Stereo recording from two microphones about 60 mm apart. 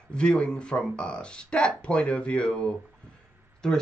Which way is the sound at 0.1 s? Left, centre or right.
Centre.